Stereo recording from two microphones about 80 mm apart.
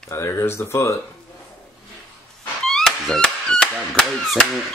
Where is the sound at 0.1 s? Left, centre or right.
Left.